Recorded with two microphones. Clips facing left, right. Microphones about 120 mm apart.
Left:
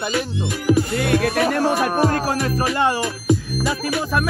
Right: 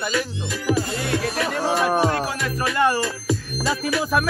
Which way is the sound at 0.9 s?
60° left (ahead or behind).